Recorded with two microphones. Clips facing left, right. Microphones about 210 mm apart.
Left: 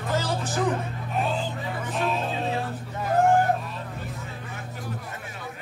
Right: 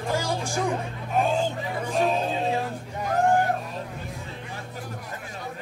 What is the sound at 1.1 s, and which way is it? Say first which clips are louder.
Music: right 4 dB; 45° right (ahead or behind).